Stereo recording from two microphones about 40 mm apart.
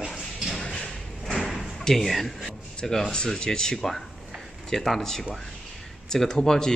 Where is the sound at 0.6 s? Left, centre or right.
Centre.